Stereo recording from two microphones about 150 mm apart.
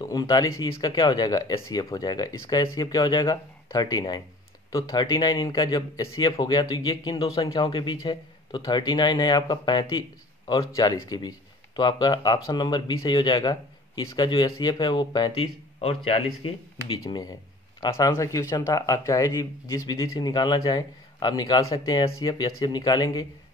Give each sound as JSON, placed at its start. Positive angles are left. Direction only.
{"t": 0.0, "sound": "speech", "side_deg": 25}
{"t": 15.8, "sound": "speech", "side_deg": 40}
{"t": 17.0, "sound": "speech", "side_deg": 25}